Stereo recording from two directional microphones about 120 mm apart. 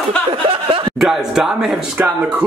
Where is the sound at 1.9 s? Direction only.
15° right (ahead or behind).